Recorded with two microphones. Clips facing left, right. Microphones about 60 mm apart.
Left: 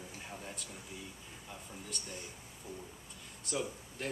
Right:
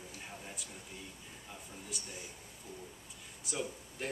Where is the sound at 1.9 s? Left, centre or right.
Centre.